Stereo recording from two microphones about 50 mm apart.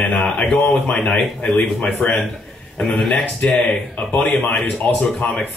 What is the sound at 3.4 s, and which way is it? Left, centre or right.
Speech, left.